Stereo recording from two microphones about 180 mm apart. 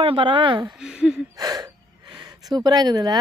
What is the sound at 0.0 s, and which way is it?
Speech, 30° right (ahead or behind).